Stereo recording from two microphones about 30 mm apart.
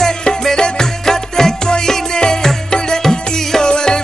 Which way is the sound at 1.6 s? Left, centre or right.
Left.